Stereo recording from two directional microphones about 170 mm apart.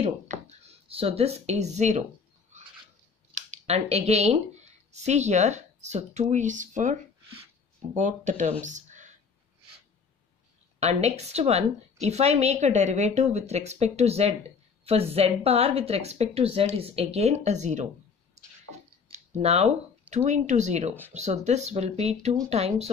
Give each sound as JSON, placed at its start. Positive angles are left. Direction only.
{"t": 0.0, "sound": "speech", "side_deg": -40}
{"t": 3.4, "sound": "speech", "side_deg": -40}
{"t": 10.8, "sound": "a woman's voice", "side_deg": -40}
{"t": 19.0, "sound": "a woman's voice", "side_deg": -40}